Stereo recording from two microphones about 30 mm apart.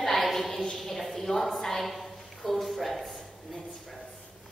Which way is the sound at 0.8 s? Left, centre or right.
Centre.